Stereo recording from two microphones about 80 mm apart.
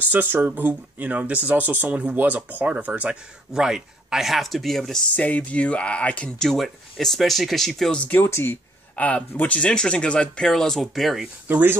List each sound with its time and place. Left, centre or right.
0.1 s speech: right; by 5.0 s centre
5.1 s speech: centre
8.1 s speech: left; by 11.2 s centre
11.4 s speech: right